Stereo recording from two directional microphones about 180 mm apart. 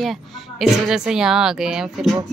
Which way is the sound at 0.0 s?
Centre (ahead or behind).